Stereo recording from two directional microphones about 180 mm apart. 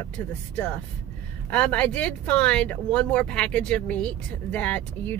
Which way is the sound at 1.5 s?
10° left (ahead or behind).